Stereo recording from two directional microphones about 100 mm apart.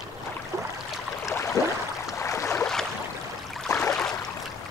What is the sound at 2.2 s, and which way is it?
Boat, 30° left (ahead or behind).